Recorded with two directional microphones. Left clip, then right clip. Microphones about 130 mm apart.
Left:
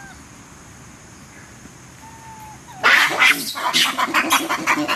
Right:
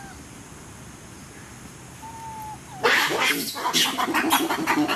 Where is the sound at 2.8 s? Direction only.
30° left (ahead or behind).